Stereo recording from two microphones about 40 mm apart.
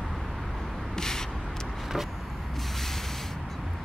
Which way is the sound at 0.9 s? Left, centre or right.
Centre.